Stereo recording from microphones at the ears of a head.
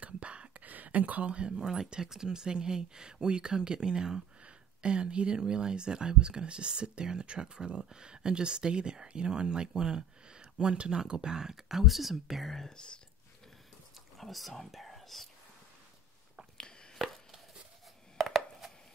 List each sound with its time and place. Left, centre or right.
0.0 s speech: right
11.9 s speech: centre
14.1 s speech: centre